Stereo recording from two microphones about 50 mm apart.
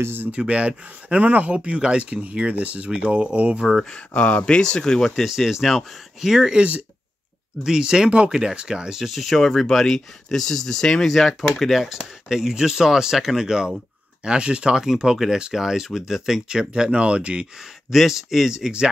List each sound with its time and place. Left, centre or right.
0.0 s speech: right
0.3 s speech: right
3.9 s speech: left
5.1 s speech: centre
6.5 s speech: right
7.6 s speech: centre
9.0 s speech: centre; by 17.5 s right
17.9 s speech: centre